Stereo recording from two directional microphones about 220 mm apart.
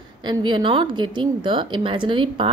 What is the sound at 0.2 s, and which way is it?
A woman's voice, 20° right (ahead or behind).